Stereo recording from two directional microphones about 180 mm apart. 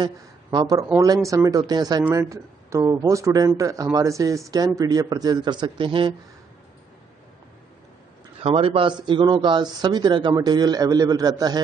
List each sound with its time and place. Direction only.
0.0 s speech: 25° right (ahead or behind)
8.4 s speech: 30° right (ahead or behind)